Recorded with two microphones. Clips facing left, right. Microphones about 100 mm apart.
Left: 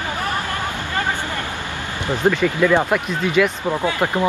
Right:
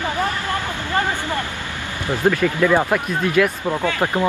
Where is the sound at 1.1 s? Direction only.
15° right (ahead or behind).